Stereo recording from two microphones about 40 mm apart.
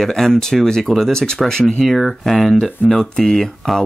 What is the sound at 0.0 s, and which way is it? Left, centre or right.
Speech, centre.